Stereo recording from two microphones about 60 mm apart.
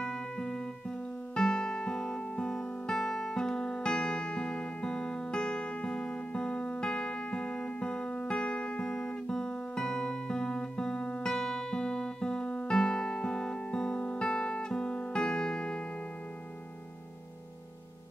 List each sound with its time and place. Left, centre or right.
0.0 s music: centre